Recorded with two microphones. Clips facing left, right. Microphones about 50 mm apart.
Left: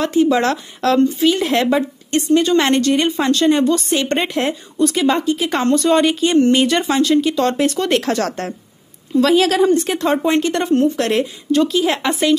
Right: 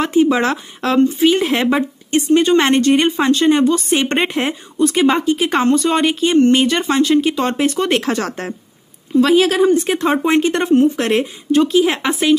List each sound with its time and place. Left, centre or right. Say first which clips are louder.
0.0 s a woman's voice: right 1 dB; centre
3.3 s a woman's voice: even; centre
3.9 s a woman's voice: right 2 dB; right; by 9.9 s centre
9.9 s a woman's voice: right 1 dB; centre